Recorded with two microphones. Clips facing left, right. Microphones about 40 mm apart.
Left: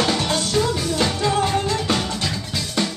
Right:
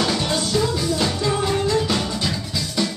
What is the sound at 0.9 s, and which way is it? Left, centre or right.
Music, left.